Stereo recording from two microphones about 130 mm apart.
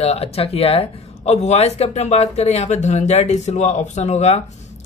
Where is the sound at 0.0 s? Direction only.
50° left (ahead or behind).